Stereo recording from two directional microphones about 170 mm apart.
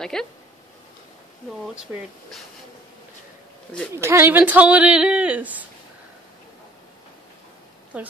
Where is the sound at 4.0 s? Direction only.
15° right (ahead or behind).